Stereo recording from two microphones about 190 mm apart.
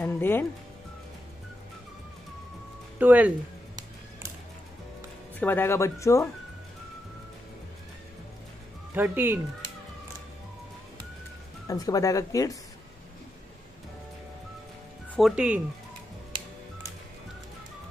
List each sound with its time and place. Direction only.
0.0 s speech: 10° left (ahead or behind)
3.0 s speech: 10° right (ahead or behind)
5.4 s speech: 10° left (ahead or behind)
8.9 s speech: 10° right (ahead or behind)
11.6 s speech: 20° left (ahead or behind)
15.0 s speech: centre (ahead or behind)